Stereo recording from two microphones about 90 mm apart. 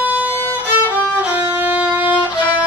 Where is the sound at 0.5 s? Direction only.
20° right (ahead or behind).